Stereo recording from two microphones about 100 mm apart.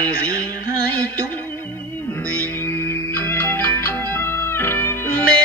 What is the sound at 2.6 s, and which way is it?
Music, 25° left (ahead or behind).